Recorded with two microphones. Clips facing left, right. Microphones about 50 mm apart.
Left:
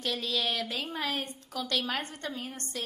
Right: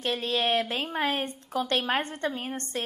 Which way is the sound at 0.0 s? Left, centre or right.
Right.